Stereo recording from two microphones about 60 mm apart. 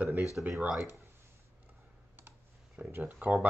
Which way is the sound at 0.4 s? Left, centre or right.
Right.